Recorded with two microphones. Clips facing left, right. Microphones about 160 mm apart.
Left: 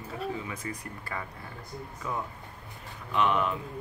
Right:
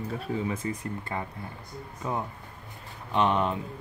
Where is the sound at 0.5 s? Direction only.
30° right (ahead or behind).